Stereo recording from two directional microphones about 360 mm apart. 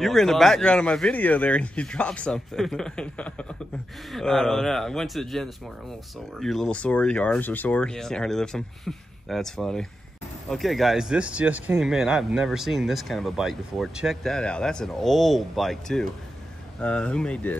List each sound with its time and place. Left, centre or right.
0.0 s a man's voice: centre